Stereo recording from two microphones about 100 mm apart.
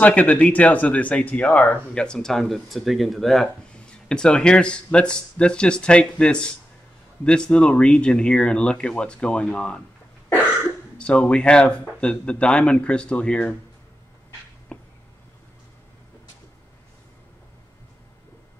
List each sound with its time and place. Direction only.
0.0 s speech: 15° left (ahead or behind)
11.0 s speech: 10° left (ahead or behind)
14.7 s a sound: 10° left (ahead or behind)